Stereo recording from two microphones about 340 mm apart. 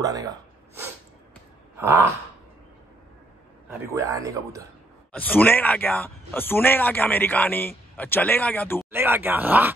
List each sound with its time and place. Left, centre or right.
0.0 s gasp: centre
3.9 s speech: centre
5.1 s speech: centre
8.9 s speech: centre